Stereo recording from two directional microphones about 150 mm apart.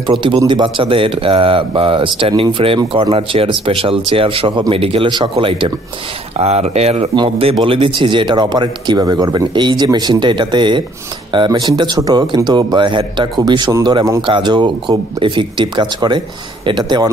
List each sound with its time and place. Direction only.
0.0 s speech: 35° right (ahead or behind)